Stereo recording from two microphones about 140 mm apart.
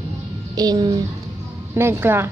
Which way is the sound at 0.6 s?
30° right (ahead or behind).